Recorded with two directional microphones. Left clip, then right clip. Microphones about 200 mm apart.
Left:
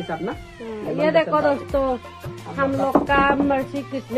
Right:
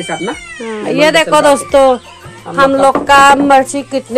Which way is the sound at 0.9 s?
25° right (ahead or behind).